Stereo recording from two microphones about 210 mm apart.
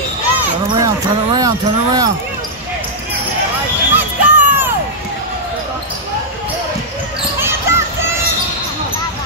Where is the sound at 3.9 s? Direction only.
10° right (ahead or behind).